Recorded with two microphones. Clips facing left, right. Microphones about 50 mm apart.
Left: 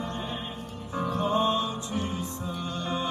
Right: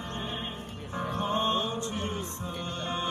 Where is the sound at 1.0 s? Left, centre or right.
Right.